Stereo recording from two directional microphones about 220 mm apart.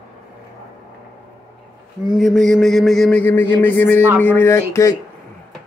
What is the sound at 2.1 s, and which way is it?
A man's voice, centre (ahead or behind).